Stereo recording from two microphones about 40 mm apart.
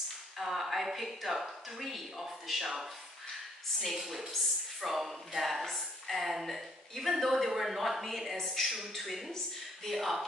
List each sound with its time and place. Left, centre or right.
0.4 s a woman's voice: centre
3.8 s a woman's voice: centre